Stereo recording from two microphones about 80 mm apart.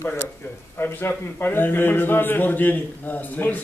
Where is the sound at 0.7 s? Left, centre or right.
Left.